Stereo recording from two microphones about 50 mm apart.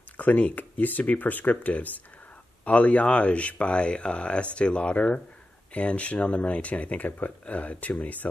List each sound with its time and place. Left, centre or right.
0.2 s speech: left